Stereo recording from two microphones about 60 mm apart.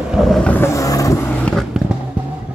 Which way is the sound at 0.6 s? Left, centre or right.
Left.